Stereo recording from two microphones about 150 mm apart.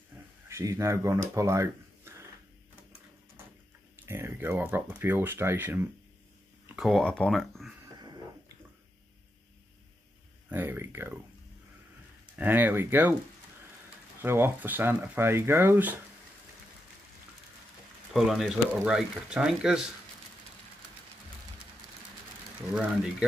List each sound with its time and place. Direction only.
0.5 s speech: 20° right (ahead or behind)
4.0 s speech: 15° right (ahead or behind)
6.7 s speech: centre (ahead or behind)
10.5 s a sound: 15° right (ahead or behind)
12.4 s speech: 10° right (ahead or behind)
14.2 s speech: 15° right (ahead or behind)
18.1 s speech: centre (ahead or behind)